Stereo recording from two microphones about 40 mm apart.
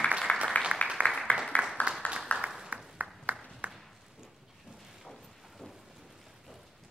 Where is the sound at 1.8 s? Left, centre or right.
Left.